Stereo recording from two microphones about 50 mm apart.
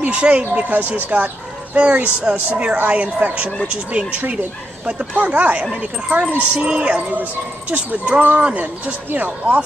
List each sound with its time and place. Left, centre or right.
0.0 s speech: right